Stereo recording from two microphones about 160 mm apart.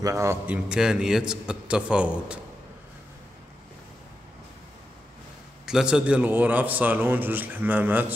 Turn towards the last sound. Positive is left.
turn(degrees=-10)  # may be behind; listen again after turning